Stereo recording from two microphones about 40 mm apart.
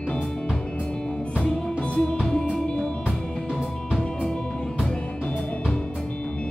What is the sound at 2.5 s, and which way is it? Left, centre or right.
Music, centre.